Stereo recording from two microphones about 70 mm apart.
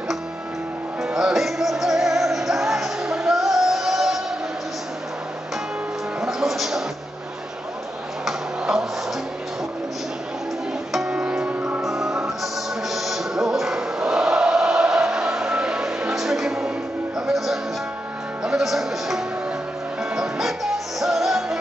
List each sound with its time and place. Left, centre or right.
1.0 s music: centre
6.2 s music: centre
8.3 s tick-tock: centre
10.9 s music: centre
11.8 s music: centre
12.8 s choir: centre
18.4 s music: centre